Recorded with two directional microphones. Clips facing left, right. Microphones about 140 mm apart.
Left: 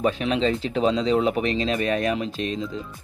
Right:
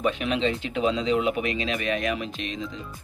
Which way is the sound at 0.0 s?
35° left (ahead or behind).